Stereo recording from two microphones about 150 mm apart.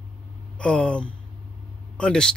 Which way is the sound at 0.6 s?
5° left (ahead or behind).